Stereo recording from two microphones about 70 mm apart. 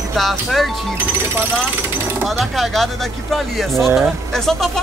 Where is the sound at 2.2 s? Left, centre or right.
Centre.